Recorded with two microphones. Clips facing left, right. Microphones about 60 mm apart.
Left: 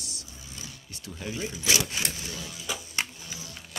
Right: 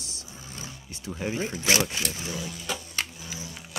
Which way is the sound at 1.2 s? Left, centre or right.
Right.